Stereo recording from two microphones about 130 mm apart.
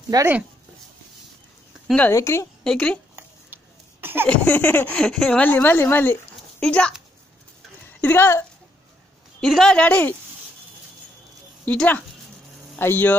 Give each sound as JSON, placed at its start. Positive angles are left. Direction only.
{"t": 0.1, "sound": "speech", "side_deg": -30}
{"t": 2.0, "sound": "a woman's voice", "side_deg": 20}
{"t": 2.6, "sound": "speech", "side_deg": 5}
{"t": 3.2, "sound": "a sound", "side_deg": -15}
{"t": 4.3, "sound": "speech", "side_deg": 15}
{"t": 8.0, "sound": "speech", "side_deg": 15}
{"t": 9.4, "sound": "speech", "side_deg": 0}
{"t": 11.6, "sound": "speech", "side_deg": 10}